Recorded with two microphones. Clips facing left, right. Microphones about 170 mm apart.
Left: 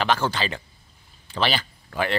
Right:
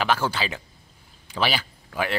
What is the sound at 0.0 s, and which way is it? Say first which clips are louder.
A man's voice: left 1 dB; 10° right (ahead or behind).